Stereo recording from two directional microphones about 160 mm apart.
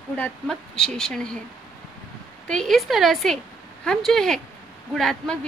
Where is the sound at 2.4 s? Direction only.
5° left (ahead or behind).